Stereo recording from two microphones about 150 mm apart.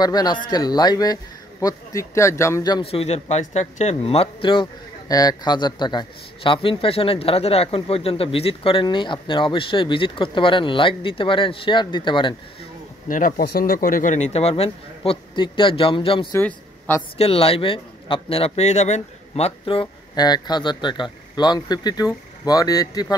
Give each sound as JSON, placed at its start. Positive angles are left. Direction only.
{"t": 0.0, "sound": "speech", "side_deg": 25}
{"t": 2.8, "sound": "speech", "side_deg": 40}
{"t": 13.1, "sound": "speech", "side_deg": 75}
{"t": 16.3, "sound": "a man's voice", "side_deg": 15}
{"t": 17.2, "sound": "speech", "side_deg": 40}